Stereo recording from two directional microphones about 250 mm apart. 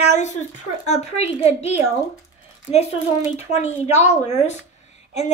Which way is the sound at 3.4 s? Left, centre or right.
Left.